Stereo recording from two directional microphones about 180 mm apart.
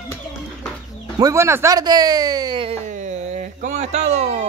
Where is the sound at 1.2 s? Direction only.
15° right (ahead or behind).